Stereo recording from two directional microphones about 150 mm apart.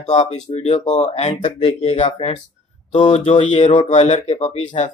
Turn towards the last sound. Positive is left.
turn(degrees=50)  # may be behind; listen again after turning